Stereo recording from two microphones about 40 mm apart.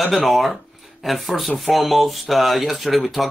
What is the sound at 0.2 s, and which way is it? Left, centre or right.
Speech, centre.